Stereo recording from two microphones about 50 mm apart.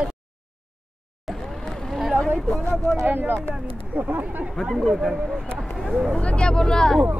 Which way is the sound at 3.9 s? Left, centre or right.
Right.